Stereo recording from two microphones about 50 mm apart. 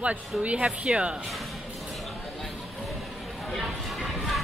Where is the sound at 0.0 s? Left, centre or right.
Right.